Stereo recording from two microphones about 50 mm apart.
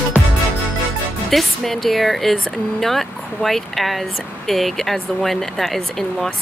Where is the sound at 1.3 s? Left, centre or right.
Centre.